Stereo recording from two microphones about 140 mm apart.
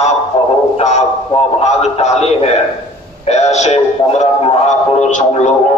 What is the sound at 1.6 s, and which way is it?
A man's voice, 50° left (ahead or behind).